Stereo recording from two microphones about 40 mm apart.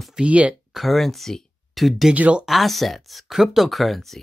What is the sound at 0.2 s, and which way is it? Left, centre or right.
Speech, right.